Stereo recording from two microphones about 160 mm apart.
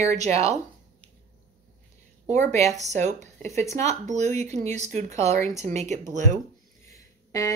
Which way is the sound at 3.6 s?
20° left (ahead or behind).